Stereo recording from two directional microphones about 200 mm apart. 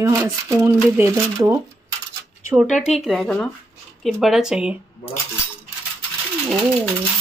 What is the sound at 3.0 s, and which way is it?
Speech, centre (ahead or behind).